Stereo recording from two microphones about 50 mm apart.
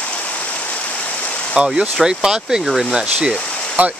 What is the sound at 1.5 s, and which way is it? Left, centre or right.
Speech, centre.